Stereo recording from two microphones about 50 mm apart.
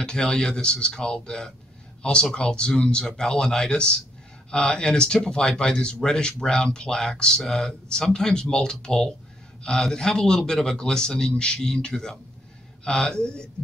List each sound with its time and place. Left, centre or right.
0.0 s speech: centre